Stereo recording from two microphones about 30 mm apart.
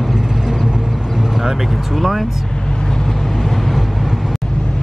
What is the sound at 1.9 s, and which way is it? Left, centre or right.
Speech, centre.